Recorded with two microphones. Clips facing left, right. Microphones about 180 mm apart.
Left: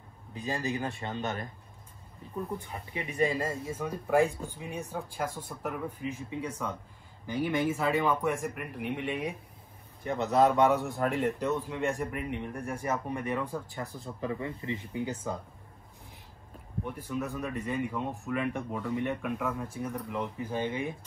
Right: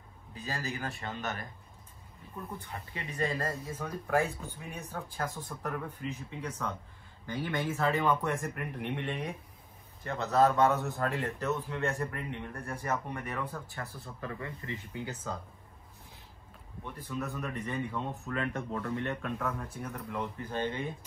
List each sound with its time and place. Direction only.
0.3 s a man's voice: 20° left (ahead or behind)
16.8 s a man's voice: 15° left (ahead or behind)